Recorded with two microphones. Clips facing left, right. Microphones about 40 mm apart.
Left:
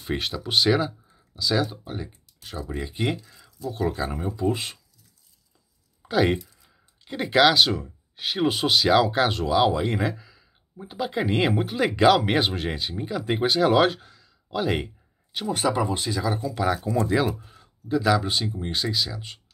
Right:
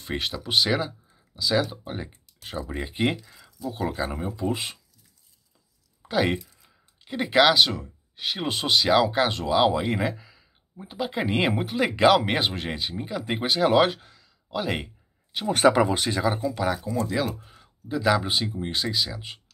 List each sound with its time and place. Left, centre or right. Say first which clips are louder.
0.0 s speech: left 1 dB; centre
1.9 s speech: even; right
3.3 s speech: even; centre
6.0 s speech: left 2 dB; centre
15.5 s speech: right 5 dB; right
16.1 s speech: right 2 dB; right
16.5 s speech: left 2 dB; centre
16.8 s speech: left 3 dB; left
17.1 s speech: left 5 dB; centre
17.4 s speech: left 1 dB; centre